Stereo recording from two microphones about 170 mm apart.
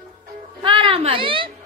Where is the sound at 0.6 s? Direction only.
30° right (ahead or behind).